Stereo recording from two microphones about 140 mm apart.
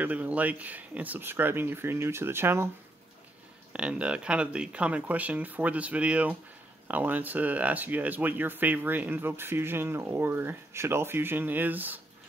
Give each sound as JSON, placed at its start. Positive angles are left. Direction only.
{"t": 0.0, "sound": "speech", "side_deg": -10}
{"t": 3.7, "sound": "speech", "side_deg": -10}